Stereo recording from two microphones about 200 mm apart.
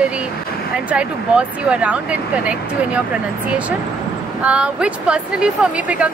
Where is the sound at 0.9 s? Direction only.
5° right (ahead or behind).